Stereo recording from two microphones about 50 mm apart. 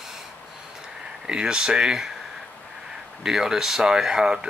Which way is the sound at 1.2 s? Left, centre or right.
Centre.